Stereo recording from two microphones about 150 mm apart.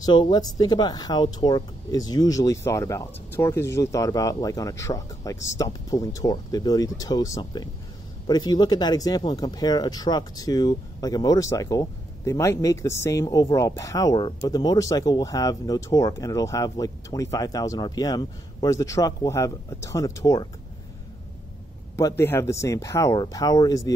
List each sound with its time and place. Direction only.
0.0 s speech: 30° left (ahead or behind)
21.9 s speech: 15° left (ahead or behind)